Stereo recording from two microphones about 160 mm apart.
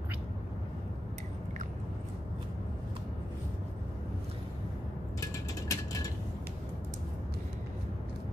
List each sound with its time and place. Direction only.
5.2 s mechanisms: 20° left (ahead or behind)